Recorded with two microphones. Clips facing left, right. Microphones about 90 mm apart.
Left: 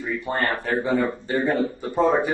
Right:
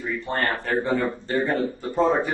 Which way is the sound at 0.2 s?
15° left (ahead or behind).